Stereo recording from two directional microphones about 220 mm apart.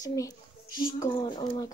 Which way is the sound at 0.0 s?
15° left (ahead or behind).